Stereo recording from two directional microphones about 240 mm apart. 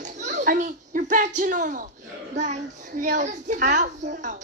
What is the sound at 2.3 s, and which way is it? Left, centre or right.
A child's voice, right.